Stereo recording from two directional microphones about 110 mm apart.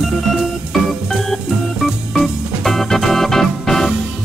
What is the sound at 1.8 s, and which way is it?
Organ, centre (ahead or behind).